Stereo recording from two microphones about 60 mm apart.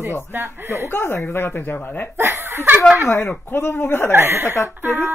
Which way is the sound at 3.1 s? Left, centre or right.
Left.